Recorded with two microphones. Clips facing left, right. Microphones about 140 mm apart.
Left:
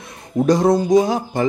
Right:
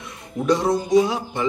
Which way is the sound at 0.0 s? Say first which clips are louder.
Left 6 dB; 35° left (ahead or behind).